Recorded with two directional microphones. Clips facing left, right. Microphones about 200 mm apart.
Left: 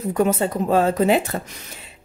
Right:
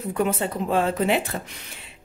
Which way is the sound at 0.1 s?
40° left (ahead or behind).